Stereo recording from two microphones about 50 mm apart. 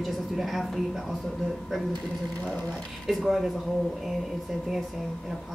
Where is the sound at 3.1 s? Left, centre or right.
Centre.